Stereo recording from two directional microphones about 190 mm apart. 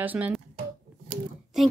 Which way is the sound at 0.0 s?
10° right (ahead or behind).